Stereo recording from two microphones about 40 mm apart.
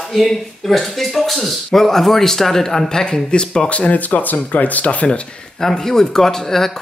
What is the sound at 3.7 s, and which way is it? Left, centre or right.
Speech, left.